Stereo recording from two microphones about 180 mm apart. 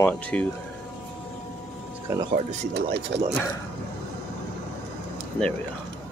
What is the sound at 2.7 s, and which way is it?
Speech, 70° right (ahead or behind).